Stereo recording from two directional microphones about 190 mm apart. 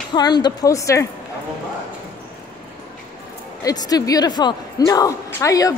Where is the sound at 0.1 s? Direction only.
20° left (ahead or behind).